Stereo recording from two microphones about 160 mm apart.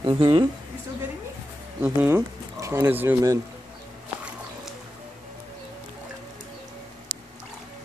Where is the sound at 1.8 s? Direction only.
15° right (ahead or behind).